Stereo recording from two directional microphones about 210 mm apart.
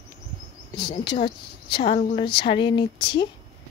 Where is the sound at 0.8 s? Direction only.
20° left (ahead or behind).